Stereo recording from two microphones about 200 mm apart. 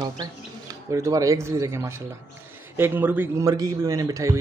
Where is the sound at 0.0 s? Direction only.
20° right (ahead or behind).